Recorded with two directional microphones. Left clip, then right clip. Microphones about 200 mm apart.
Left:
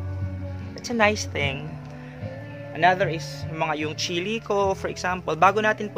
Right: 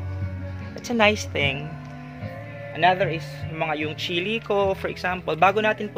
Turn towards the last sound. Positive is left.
turn(degrees=-5)  # may be behind; listen again after turning